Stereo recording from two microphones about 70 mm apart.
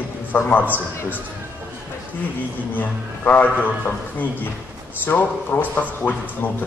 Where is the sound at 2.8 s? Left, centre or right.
Left.